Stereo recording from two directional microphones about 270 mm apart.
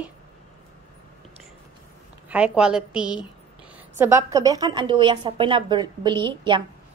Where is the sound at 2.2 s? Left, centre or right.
Centre.